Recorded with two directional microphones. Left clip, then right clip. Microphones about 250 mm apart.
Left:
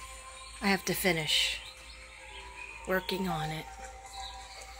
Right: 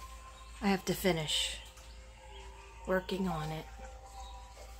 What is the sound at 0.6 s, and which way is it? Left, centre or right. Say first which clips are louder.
Speech: left 4 dB; centre.